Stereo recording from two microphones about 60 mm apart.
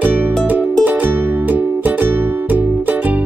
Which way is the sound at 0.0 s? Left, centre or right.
Right.